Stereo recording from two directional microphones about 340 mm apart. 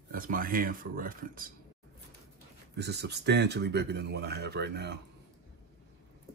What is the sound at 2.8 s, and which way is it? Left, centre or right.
Speech, right.